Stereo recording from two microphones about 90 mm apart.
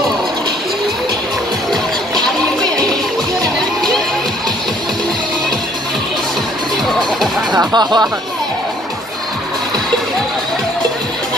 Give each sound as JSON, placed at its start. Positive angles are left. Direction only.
{"t": 7.5, "sound": "music", "side_deg": -50}